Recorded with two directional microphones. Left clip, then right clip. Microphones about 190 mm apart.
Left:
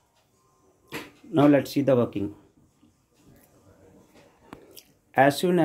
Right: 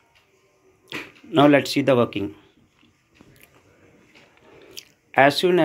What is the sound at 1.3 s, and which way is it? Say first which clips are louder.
Speech: right 4 dB; 10° left (ahead or behind).